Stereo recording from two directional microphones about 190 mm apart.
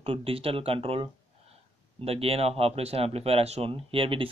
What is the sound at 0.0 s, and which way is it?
Speech, 30° right (ahead or behind).